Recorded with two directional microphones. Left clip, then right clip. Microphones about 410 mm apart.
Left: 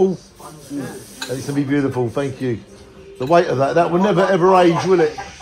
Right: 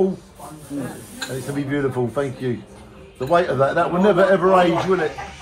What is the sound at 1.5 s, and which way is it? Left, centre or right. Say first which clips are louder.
Speech: left 3 dB; centre.